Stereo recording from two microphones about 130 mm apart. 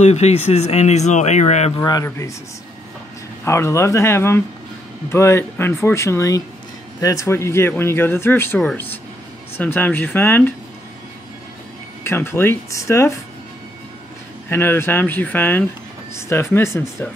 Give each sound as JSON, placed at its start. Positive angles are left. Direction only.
{"t": 0.0, "sound": "speech", "side_deg": 55}
{"t": 1.8, "sound": "speech", "side_deg": 30}
{"t": 3.4, "sound": "speech", "side_deg": 20}
{"t": 12.0, "sound": "speech", "side_deg": 20}
{"t": 14.5, "sound": "speech", "side_deg": 20}